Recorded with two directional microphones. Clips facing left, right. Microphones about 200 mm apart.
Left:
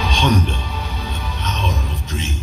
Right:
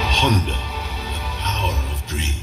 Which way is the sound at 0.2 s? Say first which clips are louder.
Left 3 dB; 15° right (ahead or behind).